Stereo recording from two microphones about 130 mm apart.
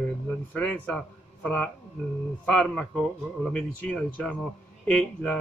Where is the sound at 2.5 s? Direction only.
5° left (ahead or behind).